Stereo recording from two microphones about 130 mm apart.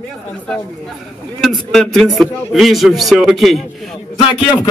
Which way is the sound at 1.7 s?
Centre (ahead or behind).